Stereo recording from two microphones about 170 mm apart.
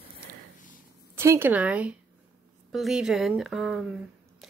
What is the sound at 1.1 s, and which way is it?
Speech, 15° right (ahead or behind).